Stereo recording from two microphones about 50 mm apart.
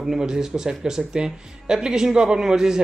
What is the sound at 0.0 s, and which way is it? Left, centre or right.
A man's voice, centre.